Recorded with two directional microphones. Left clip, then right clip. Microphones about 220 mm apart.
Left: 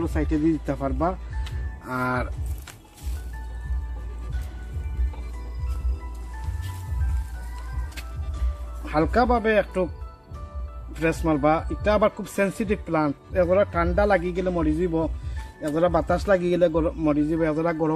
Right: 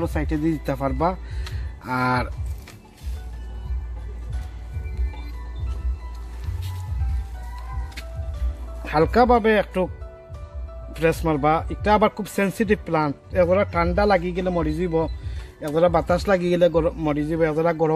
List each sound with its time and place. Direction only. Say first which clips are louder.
0.0 s speech: even; 40° right (ahead or behind)
8.8 s speech: right 4 dB; 45° right (ahead or behind)
10.9 s speech: right 2 dB; 40° right (ahead or behind)